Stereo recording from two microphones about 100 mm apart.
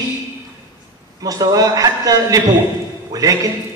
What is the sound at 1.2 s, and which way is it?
A woman's voice, 40° right (ahead or behind).